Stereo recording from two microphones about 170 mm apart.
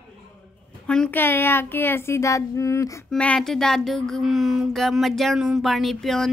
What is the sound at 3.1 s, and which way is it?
Speech, 5° left (ahead or behind).